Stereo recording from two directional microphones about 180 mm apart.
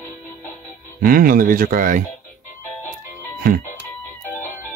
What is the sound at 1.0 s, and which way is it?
Speech, 50° right (ahead or behind).